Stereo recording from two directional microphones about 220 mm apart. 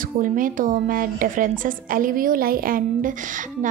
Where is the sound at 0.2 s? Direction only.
35° right (ahead or behind).